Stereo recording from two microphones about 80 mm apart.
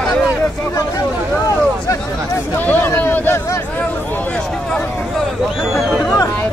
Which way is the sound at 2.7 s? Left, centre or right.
Left.